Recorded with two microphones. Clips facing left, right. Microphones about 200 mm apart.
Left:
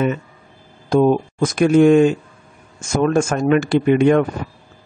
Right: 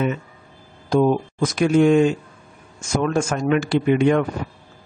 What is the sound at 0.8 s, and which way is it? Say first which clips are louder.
Speech: left 3 dB; 50° left (ahead or behind).